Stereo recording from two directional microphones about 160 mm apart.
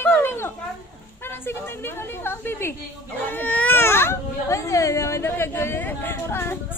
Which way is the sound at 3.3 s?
10° left (ahead or behind).